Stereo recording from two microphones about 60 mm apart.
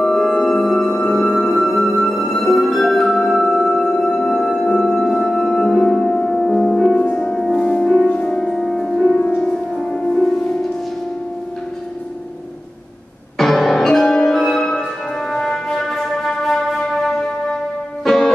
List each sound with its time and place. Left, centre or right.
0.0 s music: centre
8.1 s music: centre
8.4 s music: centre
13.4 s music: centre